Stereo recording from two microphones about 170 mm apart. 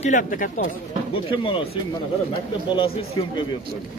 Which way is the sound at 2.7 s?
35° left (ahead or behind).